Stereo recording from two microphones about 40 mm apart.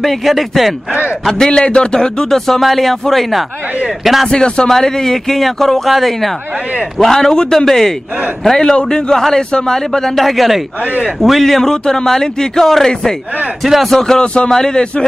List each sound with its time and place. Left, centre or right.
0.0 s speech: centre
1.4 s a man's voice: left; by 4.3 s centre
4.3 s a man's voice: left
4.7 s speech: centre
7.0 s a man's voice: centre
10.1 s a man's voice: centre
13.7 s speech: centre
13.9 s a man's voice: centre
14.2 s a man's voice: left